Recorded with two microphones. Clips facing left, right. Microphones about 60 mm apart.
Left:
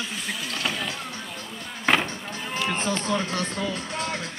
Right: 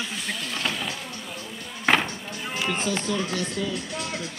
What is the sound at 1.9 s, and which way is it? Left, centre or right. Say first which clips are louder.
Music: right 1 dB; centre.